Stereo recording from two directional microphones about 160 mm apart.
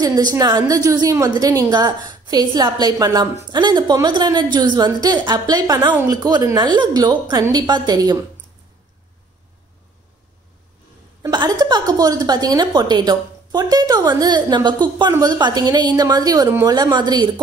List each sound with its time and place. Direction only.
0.0 s a woman's voice: 20° right (ahead or behind)
11.3 s a woman's voice: 25° right (ahead or behind)